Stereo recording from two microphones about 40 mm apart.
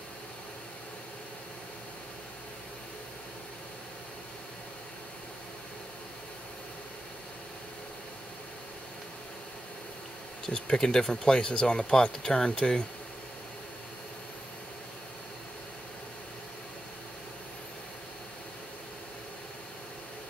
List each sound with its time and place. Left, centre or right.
10.4 s speech: centre